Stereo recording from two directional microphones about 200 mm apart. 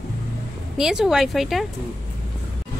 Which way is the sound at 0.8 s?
5° right (ahead or behind).